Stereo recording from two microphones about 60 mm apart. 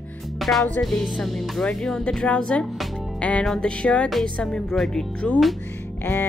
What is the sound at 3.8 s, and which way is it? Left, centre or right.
Speech, centre.